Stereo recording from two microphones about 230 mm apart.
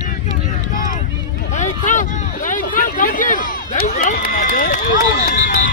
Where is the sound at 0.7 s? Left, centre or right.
Left.